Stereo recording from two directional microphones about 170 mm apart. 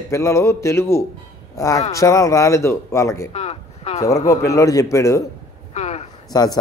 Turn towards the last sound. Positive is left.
turn(degrees=25)  # may be behind; listen again after turning